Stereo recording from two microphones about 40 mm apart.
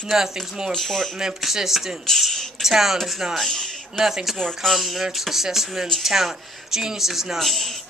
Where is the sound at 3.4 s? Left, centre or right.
Centre.